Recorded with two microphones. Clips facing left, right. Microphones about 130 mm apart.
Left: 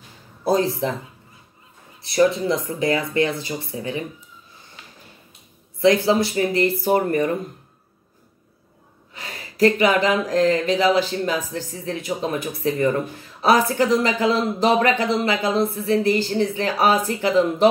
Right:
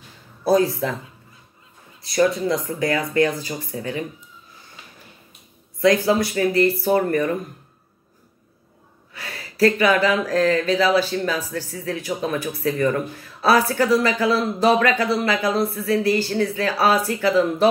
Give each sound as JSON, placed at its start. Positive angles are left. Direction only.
{"t": 0.4, "sound": "speech", "side_deg": 25}
{"t": 2.0, "sound": "speech", "side_deg": 25}
{"t": 5.8, "sound": "speech", "side_deg": 25}
{"t": 9.1, "sound": "speech", "side_deg": 20}